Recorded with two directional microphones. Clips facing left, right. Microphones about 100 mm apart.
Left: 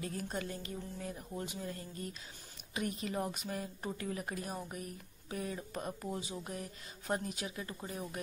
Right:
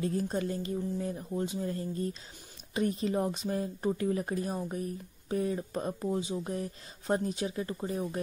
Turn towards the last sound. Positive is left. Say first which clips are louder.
# right 9 dB
turn(degrees=-30)  # may be behind; listen again after turning